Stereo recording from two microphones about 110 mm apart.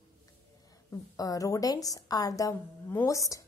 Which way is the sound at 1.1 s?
35° left (ahead or behind).